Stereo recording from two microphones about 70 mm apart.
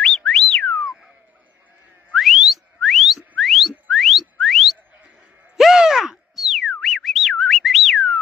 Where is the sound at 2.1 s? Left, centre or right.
Centre.